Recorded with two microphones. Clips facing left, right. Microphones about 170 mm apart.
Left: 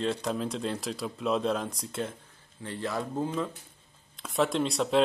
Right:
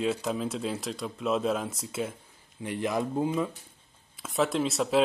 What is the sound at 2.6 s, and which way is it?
Speech, 15° right (ahead or behind).